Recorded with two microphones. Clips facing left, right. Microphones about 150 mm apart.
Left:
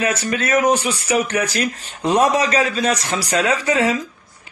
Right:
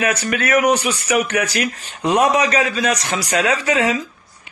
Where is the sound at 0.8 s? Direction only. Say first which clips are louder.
Right 1 dB; 30° left (ahead or behind).